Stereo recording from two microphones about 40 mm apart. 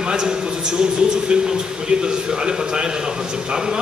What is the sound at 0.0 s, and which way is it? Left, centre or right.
A man's voice, centre.